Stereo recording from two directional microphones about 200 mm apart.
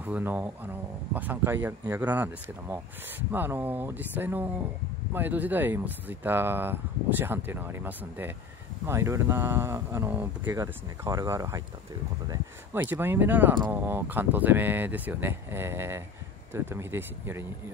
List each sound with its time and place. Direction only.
0.0 s speech: 10° right (ahead or behind)